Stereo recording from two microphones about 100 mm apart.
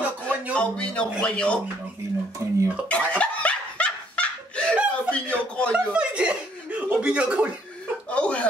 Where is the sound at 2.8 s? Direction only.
10° left (ahead or behind).